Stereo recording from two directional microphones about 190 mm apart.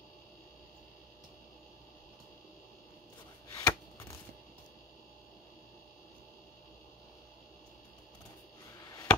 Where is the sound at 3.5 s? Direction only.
15° left (ahead or behind).